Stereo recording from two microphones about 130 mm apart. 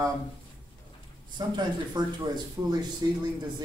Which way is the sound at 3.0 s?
25° right (ahead or behind).